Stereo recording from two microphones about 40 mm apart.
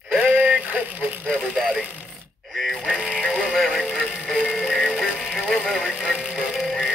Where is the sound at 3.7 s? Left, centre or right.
Centre.